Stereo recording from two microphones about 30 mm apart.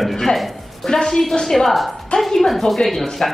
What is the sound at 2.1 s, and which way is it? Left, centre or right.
Speech, left.